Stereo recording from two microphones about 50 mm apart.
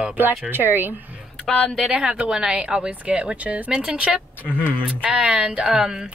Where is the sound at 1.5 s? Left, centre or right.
Centre.